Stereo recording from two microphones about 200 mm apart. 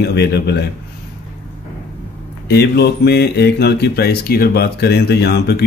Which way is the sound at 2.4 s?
55° left (ahead or behind).